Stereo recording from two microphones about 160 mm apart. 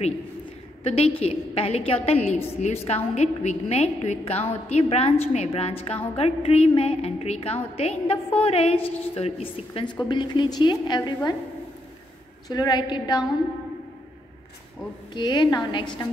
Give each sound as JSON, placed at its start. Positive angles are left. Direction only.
{"t": 0.8, "sound": "a woman's voice", "side_deg": 40}
{"t": 12.4, "sound": "a woman's voice", "side_deg": 25}
{"t": 15.1, "sound": "a woman's voice", "side_deg": 25}